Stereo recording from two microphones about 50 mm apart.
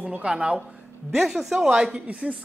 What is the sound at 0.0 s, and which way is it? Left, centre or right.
Speech, right.